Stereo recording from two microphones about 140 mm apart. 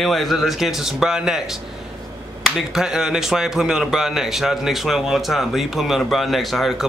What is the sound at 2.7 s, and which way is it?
A man's voice, 5° right (ahead or behind).